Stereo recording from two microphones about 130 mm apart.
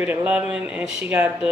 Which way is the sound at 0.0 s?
10° right (ahead or behind).